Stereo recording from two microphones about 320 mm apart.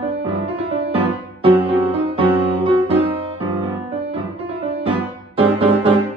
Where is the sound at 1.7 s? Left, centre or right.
Centre.